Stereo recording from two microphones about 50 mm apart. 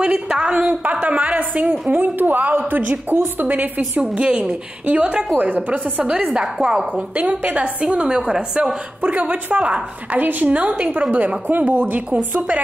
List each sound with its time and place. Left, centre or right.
0.0 s a woman's voice: right
1.0 s a woman's voice: right
4.0 s a woman's voice: right
5.4 s a woman's voice: right
6.3 s a woman's voice: centre
6.9 s a woman's voice: right
10.1 s a woman's voice: right